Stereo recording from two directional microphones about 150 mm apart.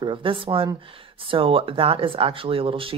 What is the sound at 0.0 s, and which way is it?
Speech, 35° right (ahead or behind).